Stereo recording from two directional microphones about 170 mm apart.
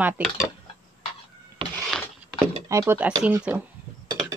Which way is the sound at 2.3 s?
15° right (ahead or behind).